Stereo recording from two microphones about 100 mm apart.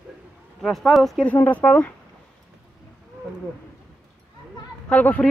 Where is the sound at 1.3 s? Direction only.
15° left (ahead or behind).